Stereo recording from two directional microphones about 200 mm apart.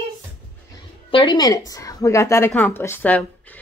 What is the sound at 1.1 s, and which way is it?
A woman's voice, 20° left (ahead or behind).